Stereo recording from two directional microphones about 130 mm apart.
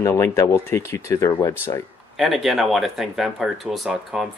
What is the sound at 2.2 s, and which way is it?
Speech, centre (ahead or behind).